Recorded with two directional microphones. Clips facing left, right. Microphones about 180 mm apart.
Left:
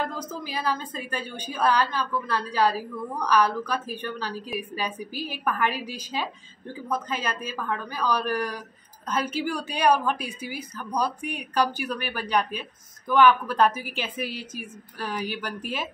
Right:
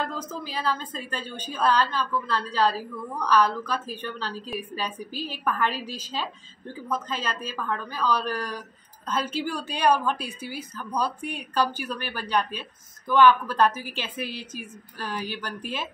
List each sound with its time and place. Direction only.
0.0 s a woman's voice: 10° left (ahead or behind)